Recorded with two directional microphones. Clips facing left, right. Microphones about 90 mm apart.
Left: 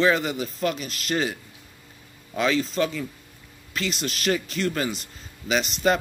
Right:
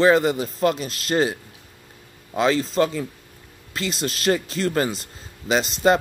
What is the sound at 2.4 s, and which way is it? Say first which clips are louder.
A man's voice: right 4 dB; 35° right (ahead or behind).